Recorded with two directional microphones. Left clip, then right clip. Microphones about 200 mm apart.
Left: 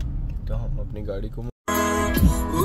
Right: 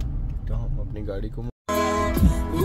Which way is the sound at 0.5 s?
10° left (ahead or behind).